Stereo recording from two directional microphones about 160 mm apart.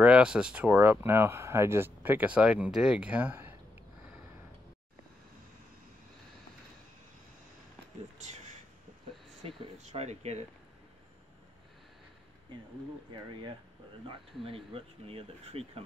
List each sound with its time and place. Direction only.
0.0 s speech: 5° right (ahead or behind)
9.8 s speech: 45° right (ahead or behind)
14.0 s speech: 35° right (ahead or behind)